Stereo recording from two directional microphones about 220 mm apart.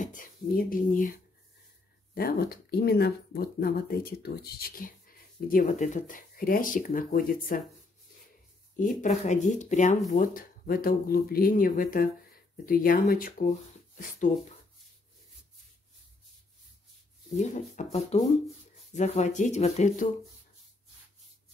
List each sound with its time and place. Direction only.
0.0 s speech: 40° left (ahead or behind)
2.1 s speech: 45° left (ahead or behind)
8.7 s speech: 35° left (ahead or behind)
17.4 s speech: 35° left (ahead or behind)